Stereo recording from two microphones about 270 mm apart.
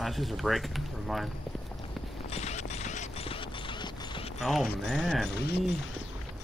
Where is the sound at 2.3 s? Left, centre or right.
Left.